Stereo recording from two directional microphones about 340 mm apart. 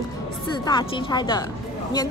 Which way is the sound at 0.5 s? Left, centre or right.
Centre.